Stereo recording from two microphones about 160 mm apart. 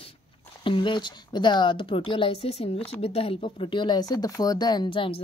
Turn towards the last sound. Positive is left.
turn(degrees=30)  # may be behind; listen again after turning